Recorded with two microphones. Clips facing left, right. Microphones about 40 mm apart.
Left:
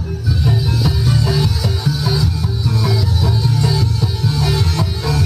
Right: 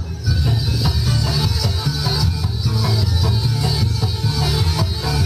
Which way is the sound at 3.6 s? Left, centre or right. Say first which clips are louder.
Left 4 dB; centre.